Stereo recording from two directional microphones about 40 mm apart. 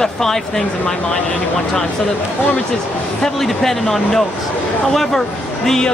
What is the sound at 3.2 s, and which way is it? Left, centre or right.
Speech, centre.